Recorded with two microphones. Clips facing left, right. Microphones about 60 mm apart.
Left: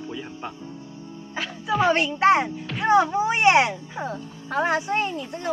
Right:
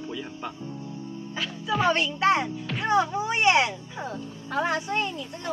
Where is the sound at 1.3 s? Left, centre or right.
Left.